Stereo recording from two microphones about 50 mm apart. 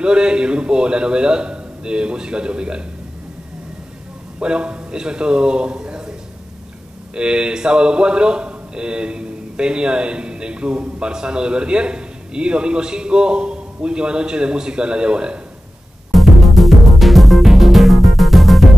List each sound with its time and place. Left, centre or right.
0.0 s a man's voice: centre
4.4 s a man's voice: right
7.2 s a man's voice: centre
16.1 s music: centre